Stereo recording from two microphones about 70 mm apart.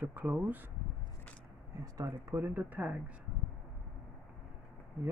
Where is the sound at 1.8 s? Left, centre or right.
Right.